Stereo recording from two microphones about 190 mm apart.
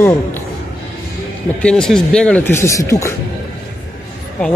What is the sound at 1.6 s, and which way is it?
Speech, 5° left (ahead or behind).